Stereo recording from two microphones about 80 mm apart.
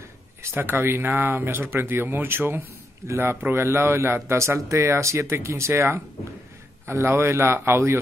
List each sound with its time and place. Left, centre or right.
0.4 s speech: right